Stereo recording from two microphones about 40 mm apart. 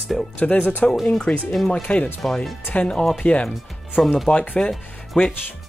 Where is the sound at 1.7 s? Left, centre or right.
Left.